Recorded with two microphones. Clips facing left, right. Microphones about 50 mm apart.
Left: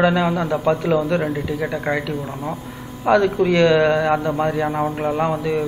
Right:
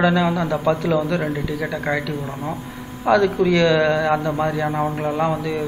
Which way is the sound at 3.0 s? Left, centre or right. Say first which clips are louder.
Even; centre.